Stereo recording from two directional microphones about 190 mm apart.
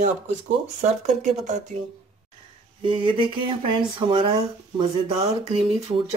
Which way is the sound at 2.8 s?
25° right (ahead or behind).